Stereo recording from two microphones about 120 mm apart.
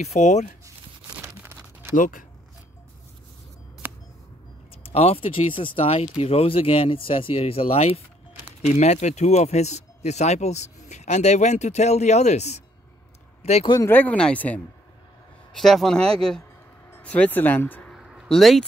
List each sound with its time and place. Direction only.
0.0 s speech: 70° left (ahead or behind)
1.2 s crumpling: 20° right (ahead or behind)
2.0 s speech: 90° left
3.8 s a sound: 15° right (ahead or behind)
4.8 s speech: 55° left (ahead or behind)
8.6 s speech: 70° left (ahead or behind)
13.4 s a sound: 65° left (ahead or behind)
13.8 s speech: 15° left (ahead or behind)
17.9 s a sound: 5° right (ahead or behind)